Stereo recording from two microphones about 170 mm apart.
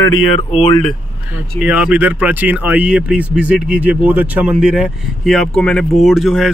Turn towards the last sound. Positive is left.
turn(degrees=0)  # may be behind; listen again after turning